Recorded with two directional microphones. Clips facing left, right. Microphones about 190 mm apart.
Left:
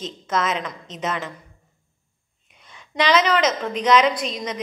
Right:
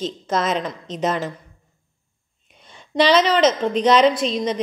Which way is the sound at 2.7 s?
30° right (ahead or behind).